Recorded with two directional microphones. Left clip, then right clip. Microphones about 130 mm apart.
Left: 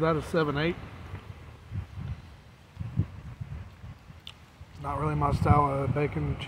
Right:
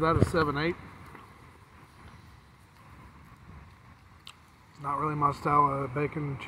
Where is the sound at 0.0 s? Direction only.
30° left (ahead or behind).